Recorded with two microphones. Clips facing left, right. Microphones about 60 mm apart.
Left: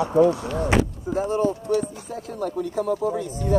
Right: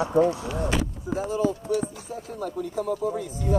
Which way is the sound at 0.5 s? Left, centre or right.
Left.